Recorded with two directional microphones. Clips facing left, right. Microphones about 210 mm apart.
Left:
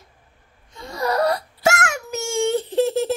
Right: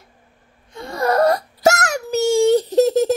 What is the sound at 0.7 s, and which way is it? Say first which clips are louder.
Wail: right 4 dB; 55° right (ahead or behind).